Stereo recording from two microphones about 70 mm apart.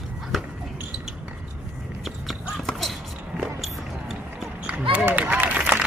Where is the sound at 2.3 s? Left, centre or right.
Centre.